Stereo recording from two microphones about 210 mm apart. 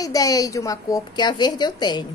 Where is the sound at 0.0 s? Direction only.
15° left (ahead or behind).